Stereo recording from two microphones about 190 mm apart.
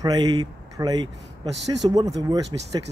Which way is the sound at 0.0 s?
20° right (ahead or behind).